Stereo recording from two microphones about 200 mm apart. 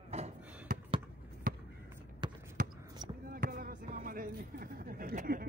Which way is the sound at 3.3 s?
45° right (ahead or behind).